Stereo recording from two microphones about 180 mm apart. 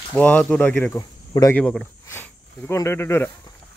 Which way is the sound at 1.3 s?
20° left (ahead or behind).